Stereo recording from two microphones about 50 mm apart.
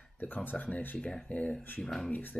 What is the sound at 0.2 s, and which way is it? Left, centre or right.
Speech, left.